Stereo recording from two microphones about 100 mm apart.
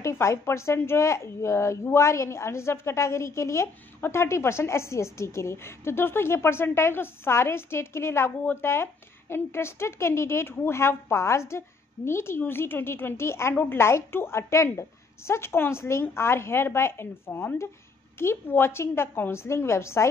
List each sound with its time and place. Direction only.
0.0 s a woman's voice: 30° left (ahead or behind)